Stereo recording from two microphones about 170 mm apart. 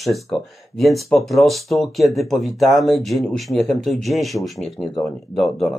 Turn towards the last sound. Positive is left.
turn(degrees=0)  # may be behind; listen again after turning